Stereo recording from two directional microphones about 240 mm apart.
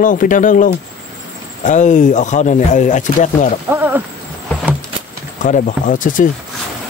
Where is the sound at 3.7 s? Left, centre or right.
Centre.